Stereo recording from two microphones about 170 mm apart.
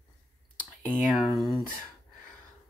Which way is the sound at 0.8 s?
50° left (ahead or behind).